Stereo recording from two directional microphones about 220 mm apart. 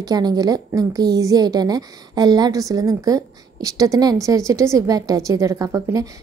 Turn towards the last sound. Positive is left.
turn(degrees=-15)  # may be behind; listen again after turning